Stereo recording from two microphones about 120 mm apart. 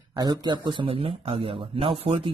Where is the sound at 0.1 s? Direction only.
35° right (ahead or behind).